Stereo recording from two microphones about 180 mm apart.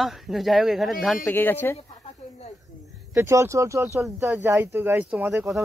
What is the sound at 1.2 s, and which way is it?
Speech, 10° left (ahead or behind).